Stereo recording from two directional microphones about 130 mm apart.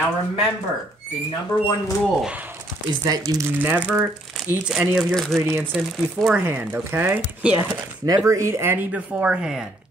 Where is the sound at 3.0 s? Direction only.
30° right (ahead or behind).